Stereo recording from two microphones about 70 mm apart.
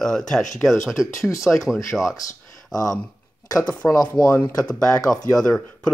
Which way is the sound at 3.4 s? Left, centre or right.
Left.